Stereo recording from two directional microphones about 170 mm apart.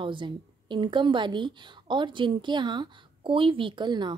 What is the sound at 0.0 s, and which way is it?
A woman's voice, 30° right (ahead or behind).